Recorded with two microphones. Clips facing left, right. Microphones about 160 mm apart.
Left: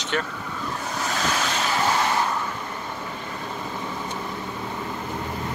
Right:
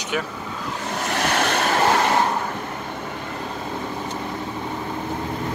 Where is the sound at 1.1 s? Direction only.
65° right (ahead or behind).